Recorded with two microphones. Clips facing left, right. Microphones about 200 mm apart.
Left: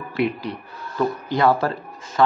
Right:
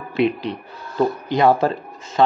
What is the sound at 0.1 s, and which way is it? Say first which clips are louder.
Speech: right 4 dB; 20° right (ahead or behind).